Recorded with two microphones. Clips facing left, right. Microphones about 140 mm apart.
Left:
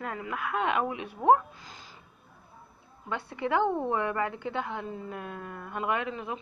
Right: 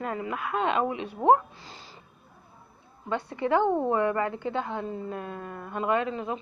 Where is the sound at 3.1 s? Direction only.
20° right (ahead or behind).